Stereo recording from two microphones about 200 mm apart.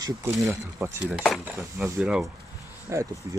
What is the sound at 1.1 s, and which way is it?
Speech, centre (ahead or behind).